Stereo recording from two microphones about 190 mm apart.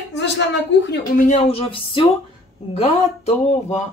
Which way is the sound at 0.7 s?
70° left (ahead or behind).